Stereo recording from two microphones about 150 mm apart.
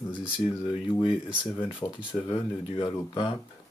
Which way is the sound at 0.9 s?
35° left (ahead or behind).